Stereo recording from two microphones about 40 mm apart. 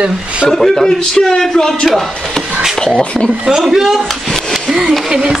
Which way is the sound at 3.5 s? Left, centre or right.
Centre.